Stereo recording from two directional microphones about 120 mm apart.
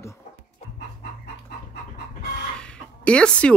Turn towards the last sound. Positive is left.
turn(degrees=10)  # may be behind; listen again after turning